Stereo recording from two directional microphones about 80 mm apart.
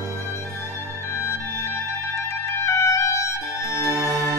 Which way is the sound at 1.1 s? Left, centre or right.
Left.